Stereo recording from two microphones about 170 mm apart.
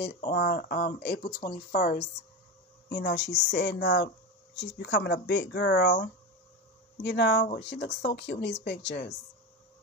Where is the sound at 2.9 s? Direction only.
85° left.